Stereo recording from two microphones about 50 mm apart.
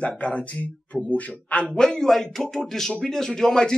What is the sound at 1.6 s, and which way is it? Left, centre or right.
A man's voice, centre.